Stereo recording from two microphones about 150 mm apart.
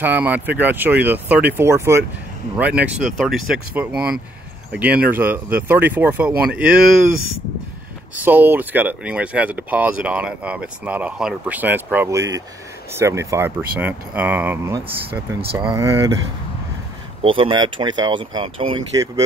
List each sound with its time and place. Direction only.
0.0 s speech: 10° right (ahead or behind)
8.2 s speech: 10° right (ahead or behind)
17.2 s speech: 35° right (ahead or behind)